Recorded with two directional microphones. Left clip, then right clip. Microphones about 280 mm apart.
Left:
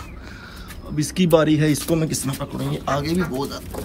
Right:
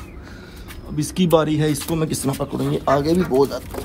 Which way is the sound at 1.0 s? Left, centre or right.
Centre.